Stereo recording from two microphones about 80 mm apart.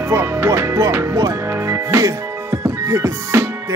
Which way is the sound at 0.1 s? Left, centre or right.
Right.